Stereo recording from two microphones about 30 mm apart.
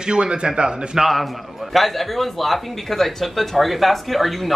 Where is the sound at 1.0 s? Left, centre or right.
Centre.